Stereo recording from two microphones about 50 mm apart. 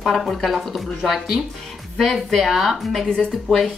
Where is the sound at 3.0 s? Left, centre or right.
Centre.